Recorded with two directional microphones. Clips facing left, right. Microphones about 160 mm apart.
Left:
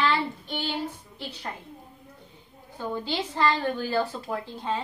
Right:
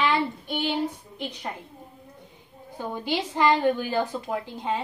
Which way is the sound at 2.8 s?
15° right (ahead or behind).